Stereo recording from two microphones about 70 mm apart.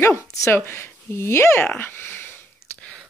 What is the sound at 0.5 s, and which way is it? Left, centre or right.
Speech, left.